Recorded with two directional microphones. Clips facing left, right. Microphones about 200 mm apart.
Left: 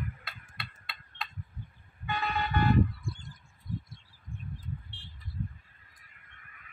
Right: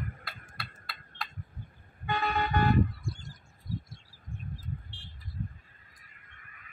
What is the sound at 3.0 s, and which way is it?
Bird, 55° left (ahead or behind).